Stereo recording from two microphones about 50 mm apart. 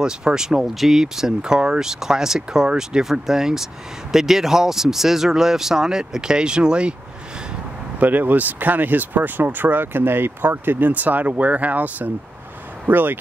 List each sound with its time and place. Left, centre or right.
0.0 s speech: centre
8.0 s speech: right